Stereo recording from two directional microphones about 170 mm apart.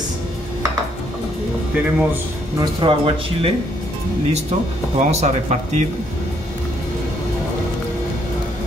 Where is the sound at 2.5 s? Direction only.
30° right (ahead or behind).